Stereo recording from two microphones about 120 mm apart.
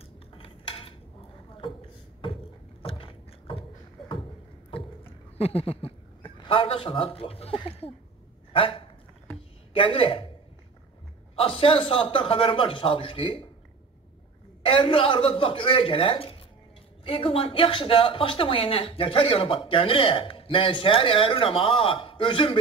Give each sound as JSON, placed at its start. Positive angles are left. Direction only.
{"t": 0.4, "sound": "dishes", "side_deg": 50}
{"t": 2.8, "sound": "a sound", "side_deg": 50}
{"t": 5.4, "sound": "a man's voice", "side_deg": 55}
{"t": 8.5, "sound": "dog", "side_deg": 50}
{"t": 9.8, "sound": "speech", "side_deg": 50}
{"t": 11.3, "sound": "speech", "side_deg": 50}
{"t": 14.6, "sound": "speech", "side_deg": 50}